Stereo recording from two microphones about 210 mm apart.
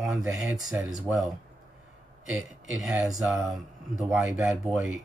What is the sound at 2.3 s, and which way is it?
A man's voice, centre (ahead or behind).